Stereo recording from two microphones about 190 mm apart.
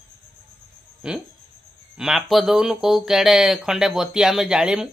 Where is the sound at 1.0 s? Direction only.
5° right (ahead or behind).